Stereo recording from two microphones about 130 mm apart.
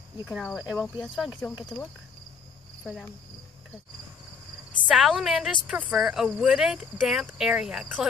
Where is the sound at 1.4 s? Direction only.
20° left (ahead or behind).